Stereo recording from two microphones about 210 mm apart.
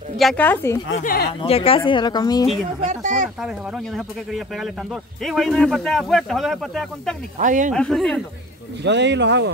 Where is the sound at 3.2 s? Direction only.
Centre (ahead or behind).